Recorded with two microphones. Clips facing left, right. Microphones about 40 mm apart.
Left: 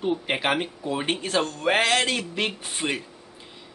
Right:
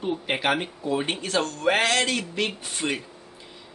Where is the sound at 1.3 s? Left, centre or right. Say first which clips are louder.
Even; left.